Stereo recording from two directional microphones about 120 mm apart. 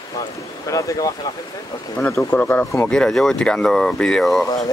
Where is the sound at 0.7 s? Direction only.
30° left (ahead or behind).